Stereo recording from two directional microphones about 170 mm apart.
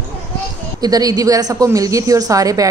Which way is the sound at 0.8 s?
20° right (ahead or behind).